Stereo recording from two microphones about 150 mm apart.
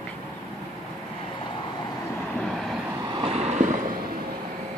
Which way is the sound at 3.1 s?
40° right (ahead or behind).